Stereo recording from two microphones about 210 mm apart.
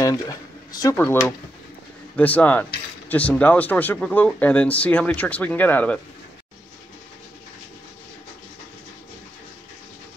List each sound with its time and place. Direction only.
0.0 s speech: 15° left (ahead or behind)